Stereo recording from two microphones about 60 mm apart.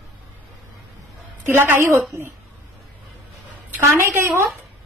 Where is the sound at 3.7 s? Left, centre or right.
Right.